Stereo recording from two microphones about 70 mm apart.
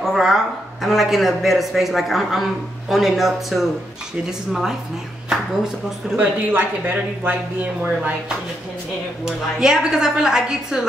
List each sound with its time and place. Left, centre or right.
0.0 s a sound: centre
0.8 s a man's voice: centre
6.1 s a woman's voice: right
9.2 s a woman's voice: centre